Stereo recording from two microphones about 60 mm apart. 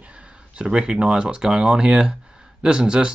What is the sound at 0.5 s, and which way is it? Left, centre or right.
Speech, centre.